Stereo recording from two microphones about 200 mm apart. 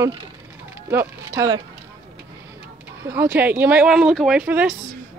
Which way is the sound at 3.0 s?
10° right (ahead or behind).